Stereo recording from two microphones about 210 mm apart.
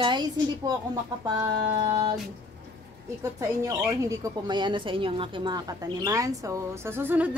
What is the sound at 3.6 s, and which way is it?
Speech, 15° right (ahead or behind).